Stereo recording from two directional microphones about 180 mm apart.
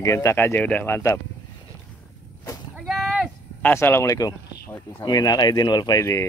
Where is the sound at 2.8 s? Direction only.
Centre (ahead or behind).